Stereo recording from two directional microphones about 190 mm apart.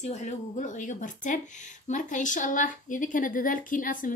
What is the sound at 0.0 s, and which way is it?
Speech, 35° left (ahead or behind).